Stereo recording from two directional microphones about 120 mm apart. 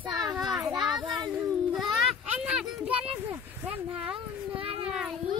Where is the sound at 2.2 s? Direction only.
10° right (ahead or behind).